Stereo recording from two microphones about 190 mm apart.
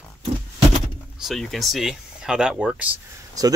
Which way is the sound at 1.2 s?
Centre (ahead or behind).